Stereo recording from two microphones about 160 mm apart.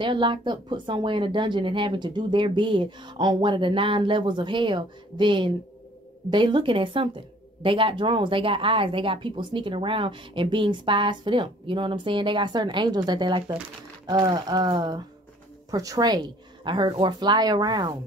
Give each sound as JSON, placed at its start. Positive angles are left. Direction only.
{"t": 0.0, "sound": "speech", "side_deg": -30}